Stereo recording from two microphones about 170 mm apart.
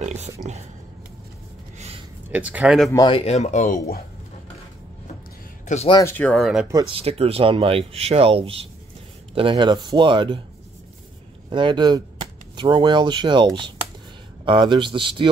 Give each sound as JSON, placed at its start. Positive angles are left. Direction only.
{"t": 0.0, "sound": "a sound", "side_deg": -40}
{"t": 2.3, "sound": "speech", "side_deg": -10}
{"t": 3.1, "sound": "speech", "side_deg": 35}
{"t": 5.9, "sound": "speech", "side_deg": 20}
{"t": 6.9, "sound": "speech", "side_deg": -35}
{"t": 11.5, "sound": "speech", "side_deg": -30}